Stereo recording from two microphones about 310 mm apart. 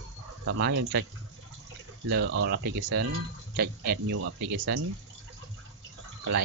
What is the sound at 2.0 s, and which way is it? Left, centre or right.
Speech, right.